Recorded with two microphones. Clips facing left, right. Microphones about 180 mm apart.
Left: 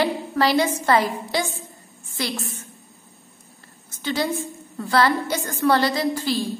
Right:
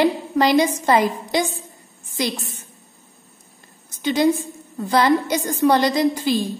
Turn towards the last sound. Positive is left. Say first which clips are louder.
# right 4 dB
turn(degrees=-15)  # may be behind; listen again after turning